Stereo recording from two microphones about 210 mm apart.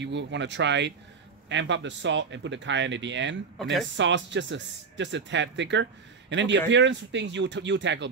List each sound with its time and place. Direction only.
0.0 s speech: 55° right (ahead or behind)